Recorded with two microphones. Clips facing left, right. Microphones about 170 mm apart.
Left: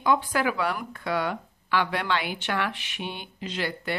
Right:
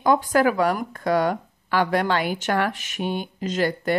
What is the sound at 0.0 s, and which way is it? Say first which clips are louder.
Speech: right 5 dB; 45° right (ahead or behind).